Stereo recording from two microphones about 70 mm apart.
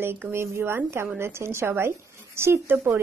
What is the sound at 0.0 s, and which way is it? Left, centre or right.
A woman's voice, right.